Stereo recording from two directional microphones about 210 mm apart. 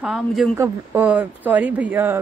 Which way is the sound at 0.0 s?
Centre (ahead or behind).